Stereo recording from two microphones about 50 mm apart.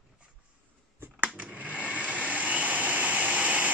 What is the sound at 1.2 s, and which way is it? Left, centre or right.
Vacuum cleaner, right.